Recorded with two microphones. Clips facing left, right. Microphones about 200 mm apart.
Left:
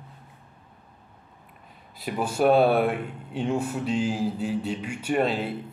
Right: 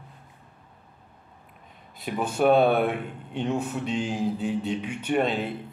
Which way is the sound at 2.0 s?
5° left (ahead or behind).